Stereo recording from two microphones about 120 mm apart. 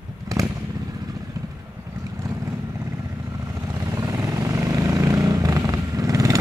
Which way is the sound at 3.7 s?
30° right (ahead or behind).